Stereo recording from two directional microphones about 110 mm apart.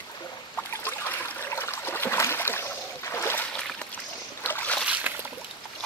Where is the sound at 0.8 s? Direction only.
20° left (ahead or behind).